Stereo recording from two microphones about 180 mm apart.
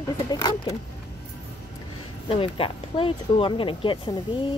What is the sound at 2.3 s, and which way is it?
Speech, 30° left (ahead or behind).